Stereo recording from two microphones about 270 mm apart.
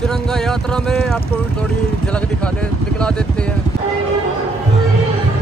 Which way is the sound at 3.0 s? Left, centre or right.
Centre.